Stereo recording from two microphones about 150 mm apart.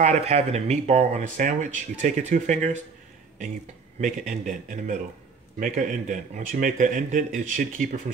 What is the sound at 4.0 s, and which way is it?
Speech, 60° right (ahead or behind).